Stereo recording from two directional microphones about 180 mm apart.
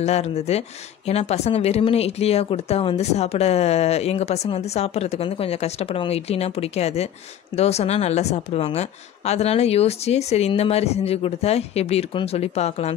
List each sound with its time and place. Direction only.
0.0 s speech: 35° left (ahead or behind)